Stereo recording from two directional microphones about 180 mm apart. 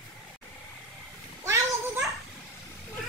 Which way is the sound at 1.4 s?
15° right (ahead or behind).